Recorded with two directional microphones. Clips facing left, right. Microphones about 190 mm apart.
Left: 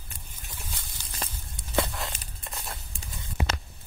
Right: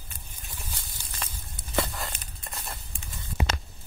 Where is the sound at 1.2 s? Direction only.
35° left (ahead or behind).